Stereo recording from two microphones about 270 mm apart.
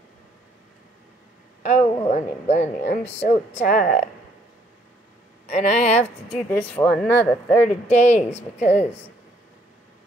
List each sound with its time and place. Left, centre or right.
1.6 s a sound: left
2.0 s speech: left
5.5 s speech: left
6.7 s speech: centre
7.6 s speech: left